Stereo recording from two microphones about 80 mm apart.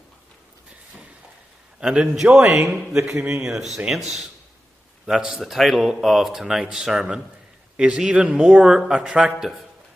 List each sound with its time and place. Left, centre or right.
1.8 s a man's voice: centre
3.3 s speech: centre
3.5 s a man's voice: centre